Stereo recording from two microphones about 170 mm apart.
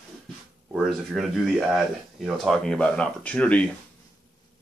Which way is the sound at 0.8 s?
Centre (ahead or behind).